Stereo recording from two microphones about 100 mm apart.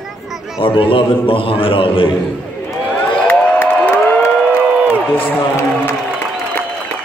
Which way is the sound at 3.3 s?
15° left (ahead or behind).